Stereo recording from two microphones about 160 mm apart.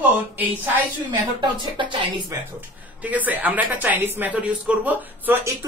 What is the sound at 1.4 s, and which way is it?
Speech, 30° right (ahead or behind).